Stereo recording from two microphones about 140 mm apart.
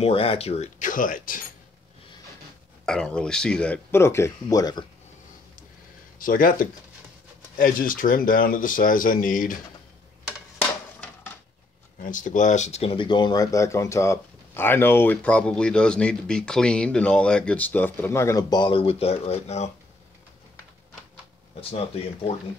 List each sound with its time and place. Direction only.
0.0 s speech: 40° left (ahead or behind); by 1.4 s 75° left (ahead or behind)
2.8 s speech: 5° left (ahead or behind); by 4.8 s 25° left (ahead or behind)
6.1 s speech: 75° left (ahead or behind)
12.0 s speech: 70° left (ahead or behind); by 19.7 s 50° left (ahead or behind)
21.5 s speech: 45° left (ahead or behind)